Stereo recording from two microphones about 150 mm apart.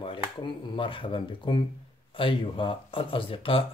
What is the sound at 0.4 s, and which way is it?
Speech, 35° left (ahead or behind).